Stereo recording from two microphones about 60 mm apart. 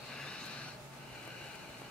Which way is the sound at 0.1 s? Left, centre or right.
Centre.